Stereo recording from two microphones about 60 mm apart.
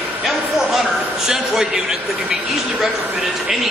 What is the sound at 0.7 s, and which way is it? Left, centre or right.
A man's voice, centre.